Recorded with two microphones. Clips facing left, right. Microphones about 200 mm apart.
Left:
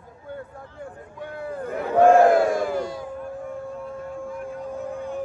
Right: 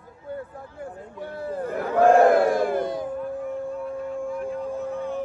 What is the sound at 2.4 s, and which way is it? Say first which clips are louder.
Crowd: right 1 dB; 55° right (ahead or behind).